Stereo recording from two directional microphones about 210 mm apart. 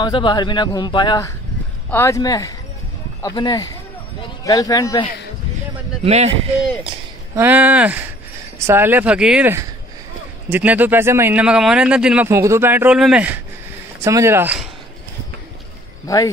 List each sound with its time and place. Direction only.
0.0 s speech: 20° left (ahead or behind)
6.0 s speech: 30° right (ahead or behind)
7.3 s speech: 10° right (ahead or behind)
16.1 s speech: 15° left (ahead or behind)